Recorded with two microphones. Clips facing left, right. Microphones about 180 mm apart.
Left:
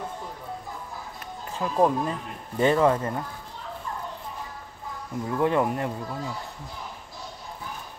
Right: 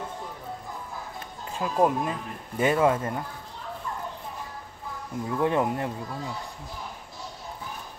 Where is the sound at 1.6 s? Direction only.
15° right (ahead or behind).